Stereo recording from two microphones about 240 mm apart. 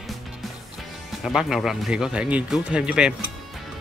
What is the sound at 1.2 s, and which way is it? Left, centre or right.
Speech, centre.